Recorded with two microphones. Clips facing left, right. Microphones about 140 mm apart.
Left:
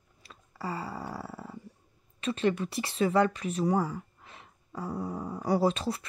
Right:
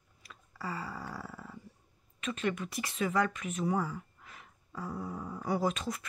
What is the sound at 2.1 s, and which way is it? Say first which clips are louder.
Speech: left 6 dB; 30° left (ahead or behind).